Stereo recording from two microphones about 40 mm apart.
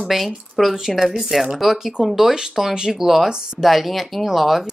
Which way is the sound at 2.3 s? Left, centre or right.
Centre.